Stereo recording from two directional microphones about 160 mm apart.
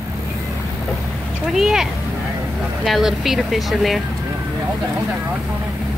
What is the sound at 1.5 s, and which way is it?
Speech, centre (ahead or behind).